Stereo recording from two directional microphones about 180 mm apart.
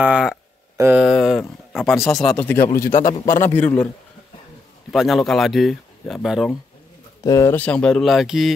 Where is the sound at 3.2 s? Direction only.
15° left (ahead or behind).